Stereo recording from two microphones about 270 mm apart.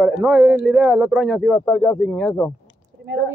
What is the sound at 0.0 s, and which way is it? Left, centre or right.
Speech, centre.